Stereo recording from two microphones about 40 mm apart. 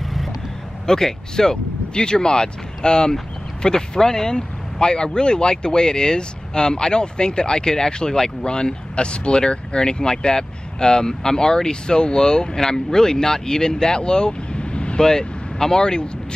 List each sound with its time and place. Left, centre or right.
0.8 s speech: centre
15.0 s speech: centre